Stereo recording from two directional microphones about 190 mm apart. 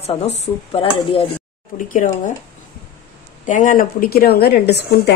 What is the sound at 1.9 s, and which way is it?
Speech, 40° left (ahead or behind).